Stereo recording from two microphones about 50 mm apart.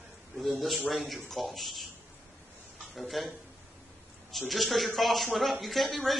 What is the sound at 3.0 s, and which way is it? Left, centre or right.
Speech, centre.